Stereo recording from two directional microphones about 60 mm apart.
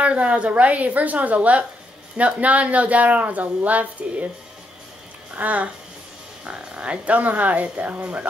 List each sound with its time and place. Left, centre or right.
0.0 s speech: right
5.3 s speech: right